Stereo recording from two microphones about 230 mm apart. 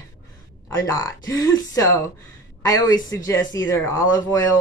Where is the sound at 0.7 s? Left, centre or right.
Centre.